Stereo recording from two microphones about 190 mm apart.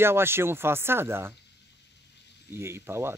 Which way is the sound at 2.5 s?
15° right (ahead or behind).